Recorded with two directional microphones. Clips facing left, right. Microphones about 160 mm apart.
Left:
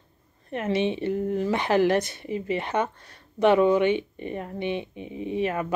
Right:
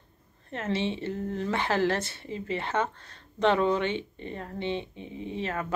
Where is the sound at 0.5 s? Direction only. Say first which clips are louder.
Left 5 dB; 15° left (ahead or behind).